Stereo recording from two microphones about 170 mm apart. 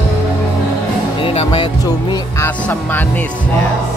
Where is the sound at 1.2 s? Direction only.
35° left (ahead or behind).